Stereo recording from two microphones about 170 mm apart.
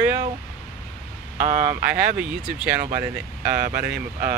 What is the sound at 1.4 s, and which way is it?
Speech, 45° right (ahead or behind).